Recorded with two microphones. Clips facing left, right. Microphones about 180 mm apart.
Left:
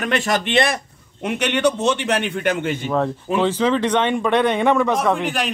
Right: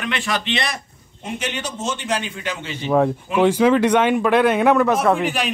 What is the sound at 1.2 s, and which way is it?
A man's voice, 70° left (ahead or behind).